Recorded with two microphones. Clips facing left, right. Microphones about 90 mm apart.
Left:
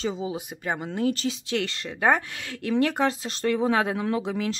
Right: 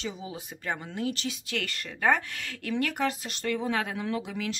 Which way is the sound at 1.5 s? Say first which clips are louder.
Left 6 dB; 20° left (ahead or behind).